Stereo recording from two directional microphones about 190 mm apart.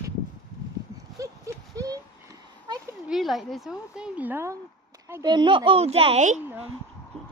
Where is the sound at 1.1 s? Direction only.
15° right (ahead or behind).